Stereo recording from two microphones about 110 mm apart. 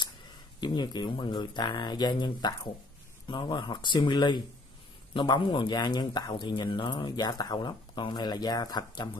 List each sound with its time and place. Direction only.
0.6 s speech: 40° left (ahead or behind)